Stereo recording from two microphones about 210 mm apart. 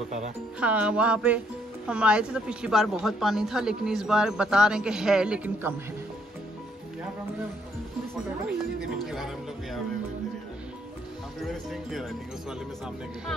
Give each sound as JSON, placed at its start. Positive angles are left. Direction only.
{"t": 0.6, "sound": "speech", "side_deg": -5}
{"t": 9.0, "sound": "speech", "side_deg": 0}
{"t": 11.4, "sound": "speech", "side_deg": 0}